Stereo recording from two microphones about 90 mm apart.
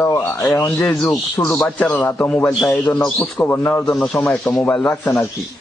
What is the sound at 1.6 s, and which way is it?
Speech, 15° left (ahead or behind).